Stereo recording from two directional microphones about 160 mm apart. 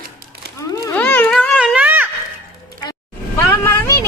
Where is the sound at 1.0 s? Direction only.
5° left (ahead or behind).